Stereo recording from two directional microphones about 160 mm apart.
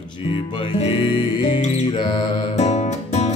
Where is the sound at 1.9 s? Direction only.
30° left (ahead or behind).